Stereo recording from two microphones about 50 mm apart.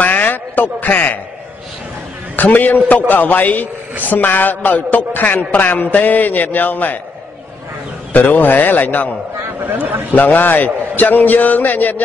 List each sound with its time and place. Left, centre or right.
0.0 s a man's voice: left
2.3 s a man's voice: left
8.1 s a man's voice: left
10.1 s a man's voice: left